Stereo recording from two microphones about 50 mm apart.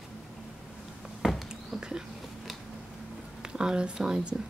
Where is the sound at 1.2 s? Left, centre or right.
Centre.